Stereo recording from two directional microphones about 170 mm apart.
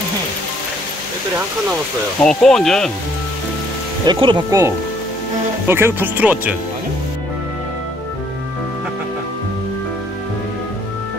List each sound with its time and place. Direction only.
2.2 s speech: 5° left (ahead or behind)
4.0 s speech: 25° right (ahead or behind)
5.7 s speech: 15° right (ahead or behind)